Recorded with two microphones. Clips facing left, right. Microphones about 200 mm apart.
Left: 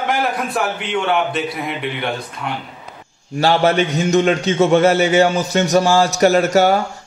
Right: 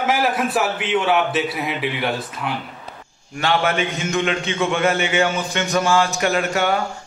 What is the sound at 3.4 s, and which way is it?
A man's voice, 35° left (ahead or behind).